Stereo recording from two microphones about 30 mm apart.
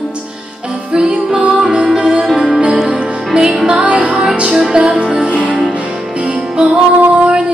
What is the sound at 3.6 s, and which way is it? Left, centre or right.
Music, right.